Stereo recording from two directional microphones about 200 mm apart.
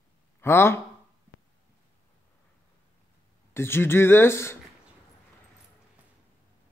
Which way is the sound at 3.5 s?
10° left (ahead or behind).